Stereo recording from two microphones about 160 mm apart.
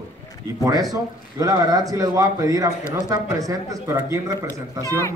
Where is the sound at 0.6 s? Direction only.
20° right (ahead or behind).